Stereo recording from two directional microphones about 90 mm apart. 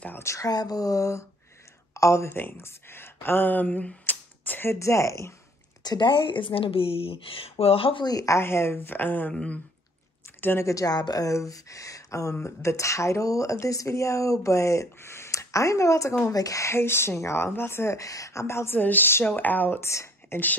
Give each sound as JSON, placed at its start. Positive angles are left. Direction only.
{"t": 0.2, "sound": "speech", "side_deg": 35}
{"t": 0.5, "sound": "speech", "side_deg": 45}
{"t": 5.9, "sound": "speech", "side_deg": 60}
{"t": 8.0, "sound": "speech", "side_deg": 45}
{"t": 8.4, "sound": "speech", "side_deg": 30}
{"t": 9.3, "sound": "a sound", "side_deg": 10}
{"t": 10.4, "sound": "speech", "side_deg": 25}
{"t": 10.7, "sound": "speech", "side_deg": 40}